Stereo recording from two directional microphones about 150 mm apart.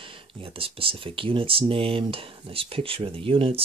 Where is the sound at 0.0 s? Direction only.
35° right (ahead or behind).